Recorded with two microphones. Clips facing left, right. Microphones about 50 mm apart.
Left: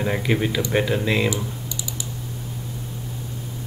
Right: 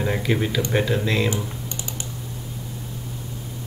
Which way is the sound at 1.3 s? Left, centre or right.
Right.